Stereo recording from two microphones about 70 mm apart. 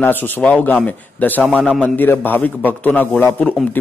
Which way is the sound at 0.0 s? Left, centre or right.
Left.